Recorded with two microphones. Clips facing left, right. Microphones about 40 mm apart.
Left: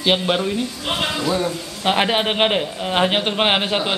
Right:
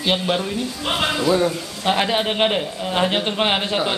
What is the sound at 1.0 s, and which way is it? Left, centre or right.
Speech, centre.